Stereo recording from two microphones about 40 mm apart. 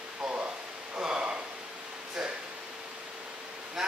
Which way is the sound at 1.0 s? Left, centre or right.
Right.